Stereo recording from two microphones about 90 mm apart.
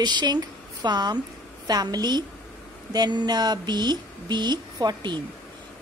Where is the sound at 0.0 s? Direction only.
55° right (ahead or behind).